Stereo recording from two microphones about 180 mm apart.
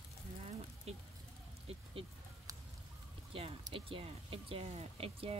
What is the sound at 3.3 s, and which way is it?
Speech, 30° right (ahead or behind).